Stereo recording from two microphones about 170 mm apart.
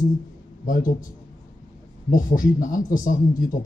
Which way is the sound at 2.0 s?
55° left (ahead or behind).